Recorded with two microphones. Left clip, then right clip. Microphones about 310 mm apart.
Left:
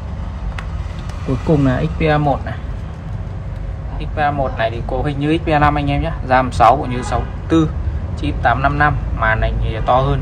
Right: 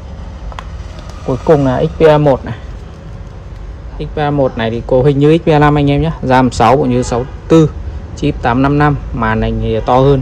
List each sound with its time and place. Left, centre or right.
1.7 s speech: centre
4.0 s speech: right